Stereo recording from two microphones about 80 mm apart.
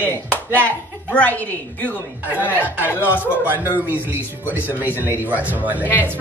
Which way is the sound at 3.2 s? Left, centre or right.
Right.